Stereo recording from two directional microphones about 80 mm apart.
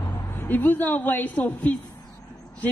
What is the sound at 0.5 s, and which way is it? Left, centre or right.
A man's voice, left.